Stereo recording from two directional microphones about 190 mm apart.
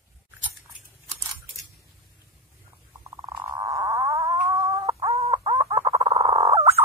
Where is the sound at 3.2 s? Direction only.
20° right (ahead or behind).